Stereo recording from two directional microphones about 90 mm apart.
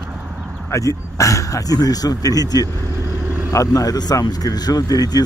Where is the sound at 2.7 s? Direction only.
35° right (ahead or behind).